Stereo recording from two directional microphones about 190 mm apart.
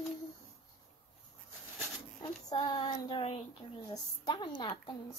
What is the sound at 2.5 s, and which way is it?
A woman's voice, 25° left (ahead or behind).